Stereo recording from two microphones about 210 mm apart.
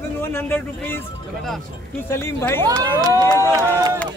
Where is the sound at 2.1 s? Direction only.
10° left (ahead or behind).